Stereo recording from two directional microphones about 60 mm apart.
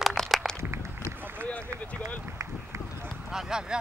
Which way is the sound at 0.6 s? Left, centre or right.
Right.